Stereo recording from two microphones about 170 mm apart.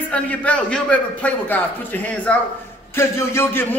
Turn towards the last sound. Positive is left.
turn(degrees=15)  # may be behind; listen again after turning